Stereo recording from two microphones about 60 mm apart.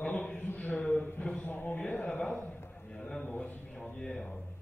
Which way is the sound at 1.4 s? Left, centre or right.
Left.